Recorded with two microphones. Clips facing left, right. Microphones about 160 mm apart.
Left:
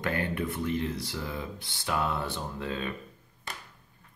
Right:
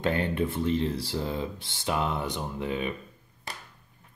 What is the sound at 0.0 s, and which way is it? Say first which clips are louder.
Speech: right 4 dB; 25° right (ahead or behind).